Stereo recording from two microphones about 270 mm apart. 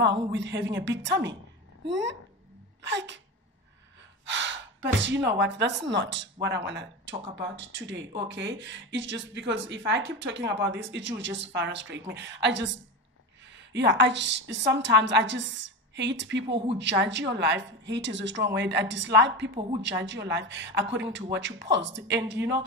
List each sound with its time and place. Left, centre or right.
0.0 s a woman's voice: right
4.3 s gasp: right
5.4 s a woman's voice: right
13.7 s a woman's voice: right